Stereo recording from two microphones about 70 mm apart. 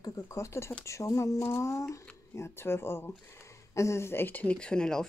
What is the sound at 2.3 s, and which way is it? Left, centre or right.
Speech, left.